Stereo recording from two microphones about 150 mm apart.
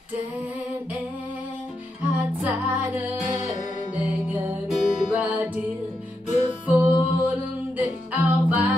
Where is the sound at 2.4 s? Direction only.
10° right (ahead or behind).